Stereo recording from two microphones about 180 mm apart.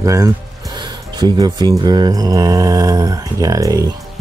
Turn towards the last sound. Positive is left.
turn(degrees=-20)  # may be behind; listen again after turning